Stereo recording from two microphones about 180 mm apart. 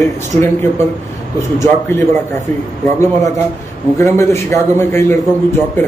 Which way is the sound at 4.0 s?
15° left (ahead or behind).